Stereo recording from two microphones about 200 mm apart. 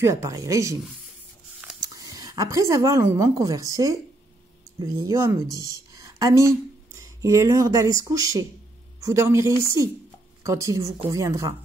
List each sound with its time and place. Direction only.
0.0 s a woman's voice: 15° right (ahead or behind)